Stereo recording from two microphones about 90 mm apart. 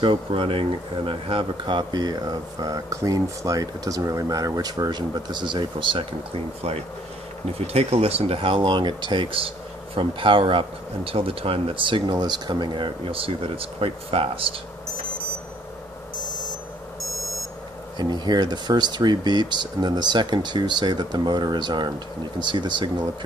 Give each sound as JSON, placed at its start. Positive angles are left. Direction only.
{"t": 0.0, "sound": "speech", "side_deg": -80}
{"t": 11.1, "sound": "speech", "side_deg": -90}
{"t": 17.9, "sound": "speech", "side_deg": -55}